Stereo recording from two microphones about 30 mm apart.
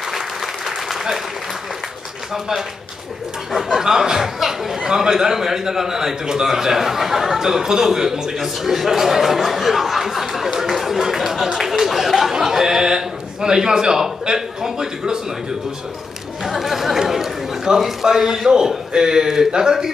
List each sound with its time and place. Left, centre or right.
0.1 s applause: centre
3.6 s a man's voice: centre
8.4 s a man's voice: centre
12.3 s a man's voice: centre
16.4 s a man's voice: centre
17.0 s chatter: centre
17.7 s a man's voice: right
18.0 s a man's voice: centre